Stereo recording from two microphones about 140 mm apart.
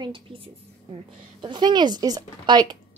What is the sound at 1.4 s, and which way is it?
A woman's voice, 30° right (ahead or behind).